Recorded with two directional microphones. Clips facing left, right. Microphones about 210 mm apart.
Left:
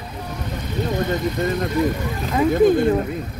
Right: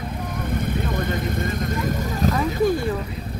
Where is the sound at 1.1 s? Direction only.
50° right (ahead or behind).